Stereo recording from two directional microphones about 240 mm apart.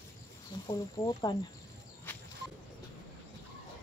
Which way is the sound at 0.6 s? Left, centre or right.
Centre.